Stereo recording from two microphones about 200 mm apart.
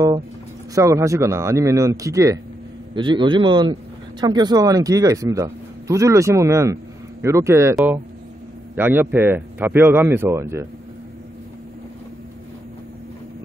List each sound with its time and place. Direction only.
0.7 s a man's voice: 15° right (ahead or behind)